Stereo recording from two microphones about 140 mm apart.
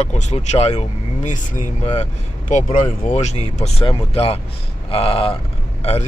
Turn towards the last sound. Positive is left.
turn(degrees=45)  # may be behind; listen again after turning